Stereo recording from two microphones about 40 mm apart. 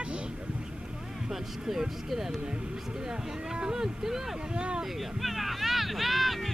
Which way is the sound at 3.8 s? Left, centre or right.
Centre.